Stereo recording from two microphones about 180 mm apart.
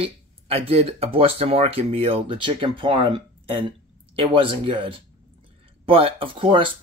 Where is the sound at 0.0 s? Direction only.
30° right (ahead or behind).